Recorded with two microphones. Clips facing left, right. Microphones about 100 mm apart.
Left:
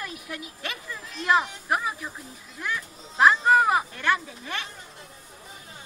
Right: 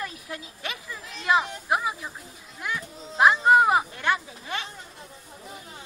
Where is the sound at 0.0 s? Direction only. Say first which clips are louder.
Right 1 dB; 30° right (ahead or behind).